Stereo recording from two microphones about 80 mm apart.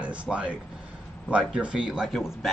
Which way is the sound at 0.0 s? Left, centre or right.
Centre.